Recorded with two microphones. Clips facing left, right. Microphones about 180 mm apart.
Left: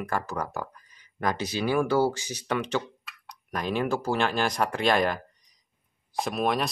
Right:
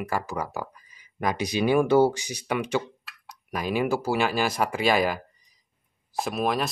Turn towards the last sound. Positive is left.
turn(degrees=0)  # may be behind; listen again after turning